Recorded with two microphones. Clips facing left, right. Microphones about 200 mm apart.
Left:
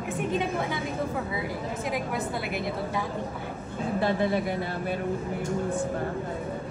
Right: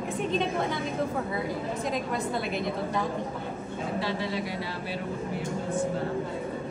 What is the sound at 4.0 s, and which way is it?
Speech, 50° left (ahead or behind).